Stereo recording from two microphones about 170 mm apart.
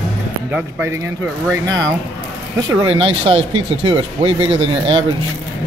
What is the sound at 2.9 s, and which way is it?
Speech, 35° right (ahead or behind).